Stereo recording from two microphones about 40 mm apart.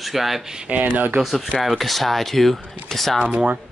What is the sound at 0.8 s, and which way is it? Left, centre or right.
Speech, right.